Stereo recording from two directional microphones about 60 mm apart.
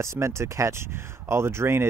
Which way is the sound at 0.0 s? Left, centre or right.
Right.